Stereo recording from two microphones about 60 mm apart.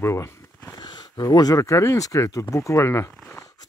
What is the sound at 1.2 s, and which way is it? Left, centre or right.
Speech, left.